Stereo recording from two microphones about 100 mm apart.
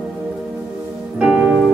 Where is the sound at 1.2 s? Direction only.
15° right (ahead or behind).